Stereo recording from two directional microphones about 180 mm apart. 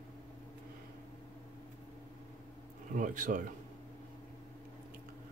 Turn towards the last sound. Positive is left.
turn(degrees=-45)  # may be behind; listen again after turning